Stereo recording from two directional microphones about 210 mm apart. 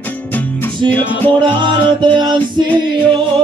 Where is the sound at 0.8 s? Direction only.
10° left (ahead or behind).